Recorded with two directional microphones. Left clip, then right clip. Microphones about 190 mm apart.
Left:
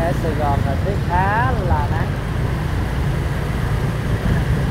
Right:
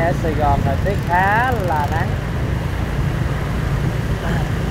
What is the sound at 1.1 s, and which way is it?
Vehicle, 40° right (ahead or behind).